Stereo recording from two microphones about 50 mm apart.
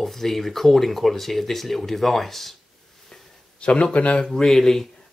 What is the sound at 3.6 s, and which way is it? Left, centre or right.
Speech, centre.